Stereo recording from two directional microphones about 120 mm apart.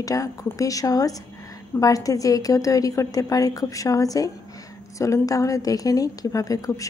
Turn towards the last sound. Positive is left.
turn(degrees=30)  # may be behind; listen again after turning